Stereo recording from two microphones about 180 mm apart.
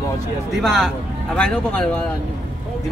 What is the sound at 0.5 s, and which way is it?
Speech, centre (ahead or behind).